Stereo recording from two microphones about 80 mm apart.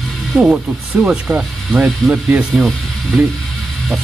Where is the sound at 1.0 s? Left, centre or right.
Centre.